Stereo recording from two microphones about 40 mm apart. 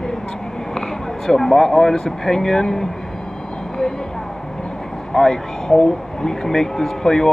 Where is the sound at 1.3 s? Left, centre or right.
Centre.